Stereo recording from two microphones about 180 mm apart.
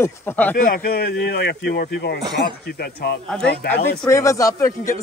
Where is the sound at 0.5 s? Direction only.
55° left (ahead or behind).